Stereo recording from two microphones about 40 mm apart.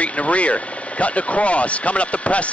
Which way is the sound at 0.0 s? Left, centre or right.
Left.